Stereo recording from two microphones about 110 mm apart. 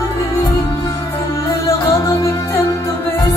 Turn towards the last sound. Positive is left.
turn(degrees=25)  # may be behind; listen again after turning